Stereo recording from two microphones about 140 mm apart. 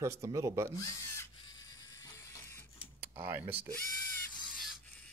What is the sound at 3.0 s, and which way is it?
Speech, 15° right (ahead or behind).